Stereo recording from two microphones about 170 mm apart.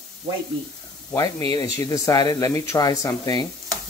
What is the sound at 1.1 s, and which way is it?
Speech, 20° left (ahead or behind).